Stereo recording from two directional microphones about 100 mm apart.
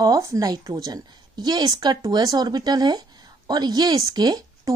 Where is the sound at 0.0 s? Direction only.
35° right (ahead or behind).